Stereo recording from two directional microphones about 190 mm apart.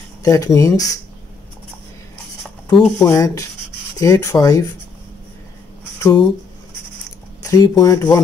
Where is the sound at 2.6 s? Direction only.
20° left (ahead or behind).